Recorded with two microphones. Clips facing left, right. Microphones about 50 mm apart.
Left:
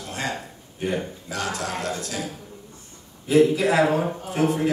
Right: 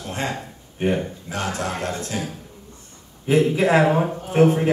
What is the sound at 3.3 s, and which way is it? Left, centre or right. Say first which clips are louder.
Speech: right 1 dB; right.